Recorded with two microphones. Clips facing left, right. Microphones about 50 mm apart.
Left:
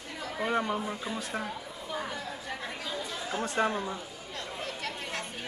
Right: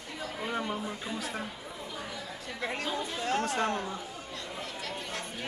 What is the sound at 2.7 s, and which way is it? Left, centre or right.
Chatter, right.